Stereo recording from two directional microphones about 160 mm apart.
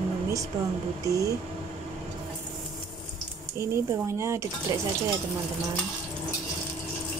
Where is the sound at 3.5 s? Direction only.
15° right (ahead or behind).